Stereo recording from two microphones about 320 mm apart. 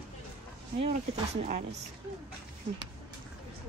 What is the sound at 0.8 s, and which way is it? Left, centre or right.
Speech, centre.